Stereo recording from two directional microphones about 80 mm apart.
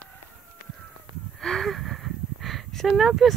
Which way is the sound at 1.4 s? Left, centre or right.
Centre.